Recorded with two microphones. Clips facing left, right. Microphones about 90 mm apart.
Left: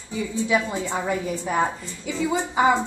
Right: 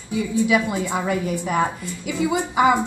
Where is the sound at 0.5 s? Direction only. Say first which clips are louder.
Right 3 dB; 15° right (ahead or behind).